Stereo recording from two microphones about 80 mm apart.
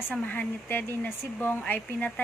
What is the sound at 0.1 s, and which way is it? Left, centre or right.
A woman's voice, centre.